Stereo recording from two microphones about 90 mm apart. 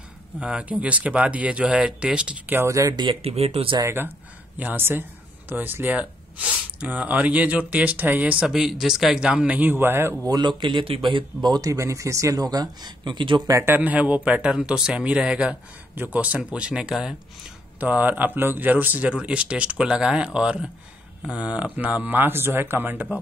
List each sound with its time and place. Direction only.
0.4 s speech: 10° right (ahead or behind)
2.5 s speech: 35° right (ahead or behind)
3.0 s speech: 75° right (ahead or behind)
4.6 s speech: 20° right (ahead or behind)
8.5 s speech: 5° right (ahead or behind); by 10.1 s 25° right (ahead or behind)
10.2 s speech: 50° right (ahead or behind)
13.5 s speech: 30° right (ahead or behind)
13.7 s speech: 15° right (ahead or behind)
17.7 s speech: 20° right (ahead or behind)